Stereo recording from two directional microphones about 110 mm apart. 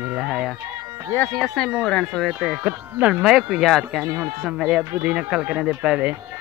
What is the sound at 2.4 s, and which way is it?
Speech, 10° right (ahead or behind).